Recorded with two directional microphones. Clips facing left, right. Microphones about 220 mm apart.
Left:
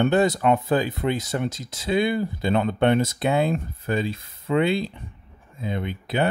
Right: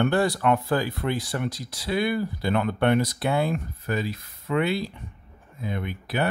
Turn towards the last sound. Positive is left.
turn(degrees=25)  # may be behind; listen again after turning